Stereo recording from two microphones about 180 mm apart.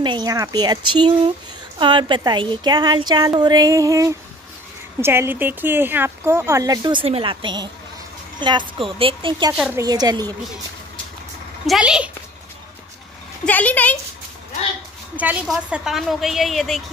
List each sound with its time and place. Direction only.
0.0 s speech: 25° right (ahead or behind)
9.5 s speech: 10° right (ahead or behind)
9.8 s speech: 20° right (ahead or behind)
11.6 s a woman's voice: 5° right (ahead or behind)
13.5 s speech: 10° left (ahead or behind)
15.1 s a woman's voice: 5° right (ahead or behind)